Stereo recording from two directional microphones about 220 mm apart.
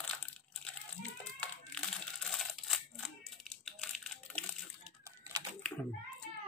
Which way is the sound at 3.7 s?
5° left (ahead or behind).